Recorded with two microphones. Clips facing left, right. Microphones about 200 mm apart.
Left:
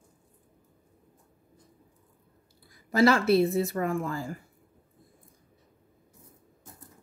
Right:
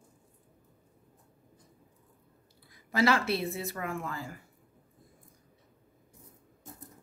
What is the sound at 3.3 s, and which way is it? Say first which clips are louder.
Speech: left 10 dB; 35° left (ahead or behind).